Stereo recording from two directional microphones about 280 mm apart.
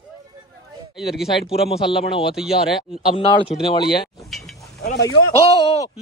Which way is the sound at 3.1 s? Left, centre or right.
Centre.